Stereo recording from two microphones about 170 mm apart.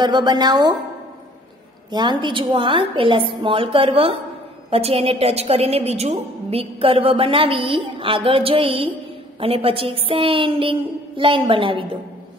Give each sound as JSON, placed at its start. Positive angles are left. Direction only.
{"t": 0.0, "sound": "speech", "side_deg": -25}
{"t": 1.9, "sound": "a woman's voice", "side_deg": -25}